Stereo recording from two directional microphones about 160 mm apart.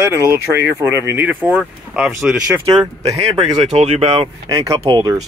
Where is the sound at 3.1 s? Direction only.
40° right (ahead or behind).